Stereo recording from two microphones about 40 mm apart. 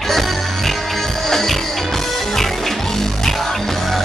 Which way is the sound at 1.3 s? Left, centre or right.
Centre.